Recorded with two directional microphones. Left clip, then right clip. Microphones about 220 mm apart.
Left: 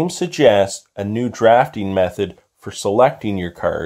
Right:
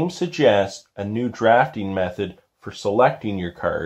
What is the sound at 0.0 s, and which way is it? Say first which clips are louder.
Speech: left 4 dB; 40° left (ahead or behind).